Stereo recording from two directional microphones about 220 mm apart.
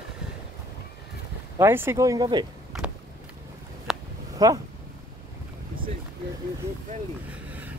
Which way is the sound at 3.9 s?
Centre (ahead or behind).